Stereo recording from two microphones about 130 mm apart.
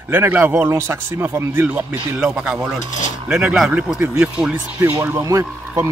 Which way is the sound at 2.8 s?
70° left (ahead or behind).